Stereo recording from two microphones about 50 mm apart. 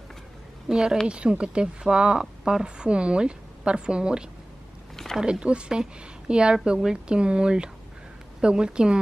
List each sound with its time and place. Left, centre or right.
0.7 s a woman's voice: centre
5.2 s a woman's voice: centre